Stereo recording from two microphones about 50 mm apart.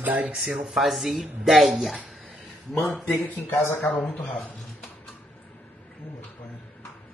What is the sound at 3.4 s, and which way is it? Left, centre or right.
Speech, left.